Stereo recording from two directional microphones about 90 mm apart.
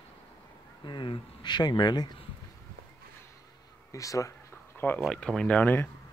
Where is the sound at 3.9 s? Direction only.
40° left (ahead or behind).